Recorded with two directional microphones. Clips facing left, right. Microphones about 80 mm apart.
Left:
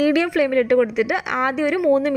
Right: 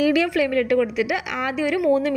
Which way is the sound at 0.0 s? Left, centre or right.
Left.